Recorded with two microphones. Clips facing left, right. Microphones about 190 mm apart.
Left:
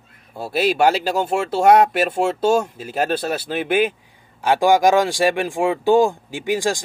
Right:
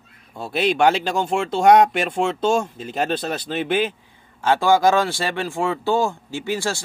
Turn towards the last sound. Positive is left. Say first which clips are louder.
# left 4 dB
turn(degrees=15)  # may be behind; listen again after turning